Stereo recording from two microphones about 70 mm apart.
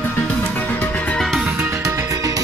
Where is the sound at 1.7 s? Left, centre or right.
Right.